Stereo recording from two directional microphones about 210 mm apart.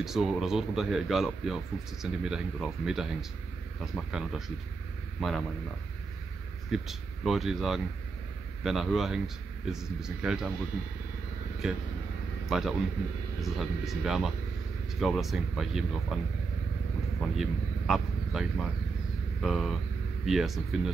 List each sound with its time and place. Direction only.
0.0 s speech: centre (ahead or behind)
6.7 s speech: centre (ahead or behind)
11.6 s a man's voice: centre (ahead or behind)
17.4 s speech: centre (ahead or behind)